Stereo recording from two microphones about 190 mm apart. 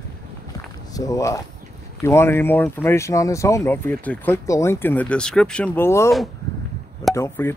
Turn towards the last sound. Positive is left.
turn(degrees=15)  # may be behind; listen again after turning